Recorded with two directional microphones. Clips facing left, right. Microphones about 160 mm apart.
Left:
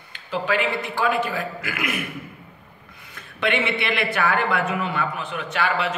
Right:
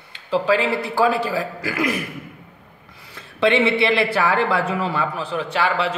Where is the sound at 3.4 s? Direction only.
25° right (ahead or behind).